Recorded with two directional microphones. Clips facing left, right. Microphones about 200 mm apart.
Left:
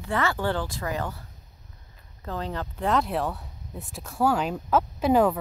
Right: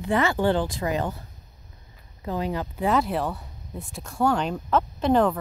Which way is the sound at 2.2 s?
10° right (ahead or behind).